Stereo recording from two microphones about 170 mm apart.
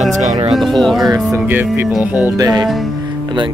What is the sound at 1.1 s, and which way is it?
Speech, 15° right (ahead or behind).